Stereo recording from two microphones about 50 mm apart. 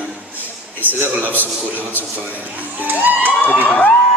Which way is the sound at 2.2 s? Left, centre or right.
Right.